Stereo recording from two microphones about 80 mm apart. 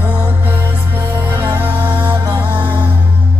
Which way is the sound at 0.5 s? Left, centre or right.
Right.